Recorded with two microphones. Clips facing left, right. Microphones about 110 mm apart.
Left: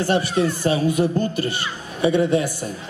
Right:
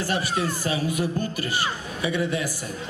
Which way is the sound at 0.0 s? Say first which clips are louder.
Left 6 dB; 25° left (ahead or behind).